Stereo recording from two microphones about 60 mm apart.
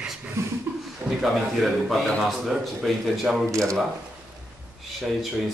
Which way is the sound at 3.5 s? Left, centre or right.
Right.